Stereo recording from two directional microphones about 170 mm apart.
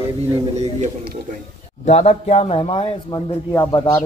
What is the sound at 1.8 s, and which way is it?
Speech, 40° left (ahead or behind).